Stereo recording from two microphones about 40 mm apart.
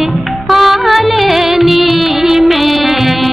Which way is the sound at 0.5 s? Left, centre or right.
Centre.